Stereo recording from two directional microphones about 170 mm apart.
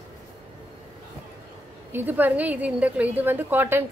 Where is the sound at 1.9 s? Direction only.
10° right (ahead or behind).